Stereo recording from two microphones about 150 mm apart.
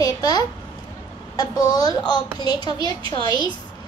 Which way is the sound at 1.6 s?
25° left (ahead or behind).